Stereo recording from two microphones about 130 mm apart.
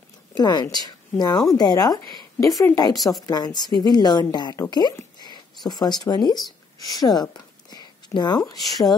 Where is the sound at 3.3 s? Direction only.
30° left (ahead or behind).